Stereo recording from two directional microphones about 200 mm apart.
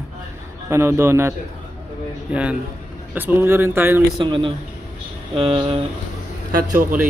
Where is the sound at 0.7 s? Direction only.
15° right (ahead or behind).